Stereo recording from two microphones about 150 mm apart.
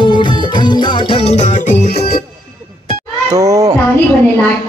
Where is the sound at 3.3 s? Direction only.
20° right (ahead or behind).